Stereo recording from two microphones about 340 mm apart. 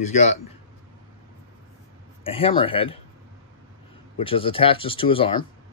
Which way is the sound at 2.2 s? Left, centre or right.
Centre.